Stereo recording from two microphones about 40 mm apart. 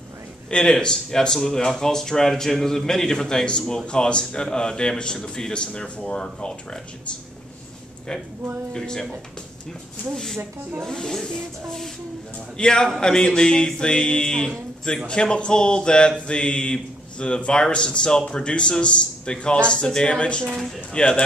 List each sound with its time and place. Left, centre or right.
0.5 s speech: centre
8.7 s speech: centre
10.1 s speech: centre
12.5 s speech: centre